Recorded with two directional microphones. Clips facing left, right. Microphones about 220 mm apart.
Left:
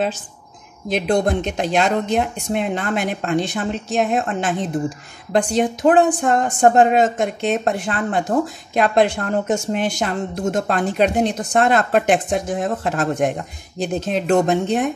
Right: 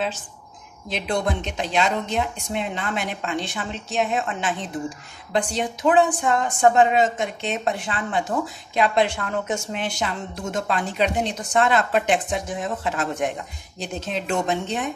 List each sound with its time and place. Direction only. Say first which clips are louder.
0.8 s speech: left 6 dB; 45° left (ahead or behind)